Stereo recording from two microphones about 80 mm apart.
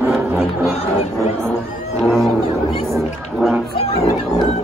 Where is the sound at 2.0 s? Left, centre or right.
Centre.